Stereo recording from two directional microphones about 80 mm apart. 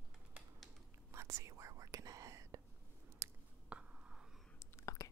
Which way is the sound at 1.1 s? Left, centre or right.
Right.